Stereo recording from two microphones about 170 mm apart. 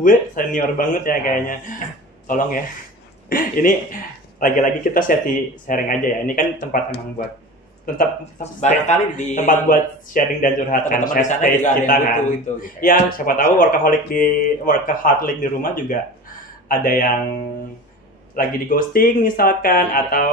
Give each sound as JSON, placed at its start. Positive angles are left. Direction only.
{"t": 0.0, "sound": "speech", "side_deg": 50}
{"t": 8.5, "sound": "speech", "side_deg": 45}